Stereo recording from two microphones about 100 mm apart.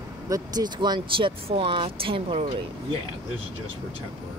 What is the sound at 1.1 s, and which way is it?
Speech, 60° right (ahead or behind).